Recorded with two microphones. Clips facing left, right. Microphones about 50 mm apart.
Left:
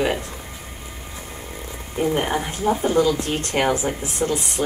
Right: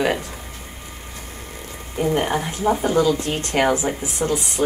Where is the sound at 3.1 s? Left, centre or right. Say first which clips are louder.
Right 1 dB; right.